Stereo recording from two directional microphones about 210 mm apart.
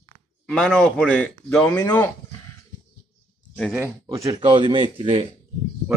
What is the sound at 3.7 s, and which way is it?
A man's voice, 10° right (ahead or behind).